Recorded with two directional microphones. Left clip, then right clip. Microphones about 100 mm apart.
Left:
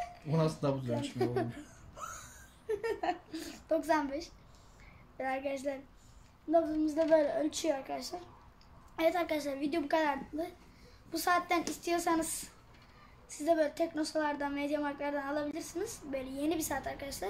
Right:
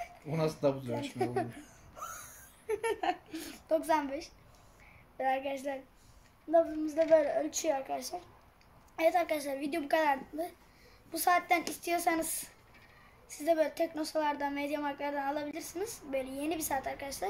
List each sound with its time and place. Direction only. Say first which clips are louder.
0.3 s speech: right 2 dB; 5° right (ahead or behind)
2.7 s a sound: right 2 dB; 20° right (ahead or behind)
3.3 s a woman's voice: right 1 dB; 5° right (ahead or behind)